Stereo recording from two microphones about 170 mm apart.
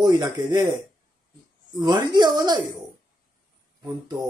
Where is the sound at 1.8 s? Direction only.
25° right (ahead or behind).